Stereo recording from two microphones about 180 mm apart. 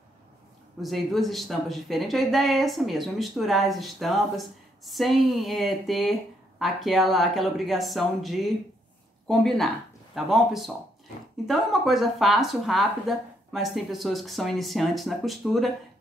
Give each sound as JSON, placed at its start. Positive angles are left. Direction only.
{"t": 0.7, "sound": "speech", "side_deg": 0}
{"t": 10.1, "sound": "speech", "side_deg": 0}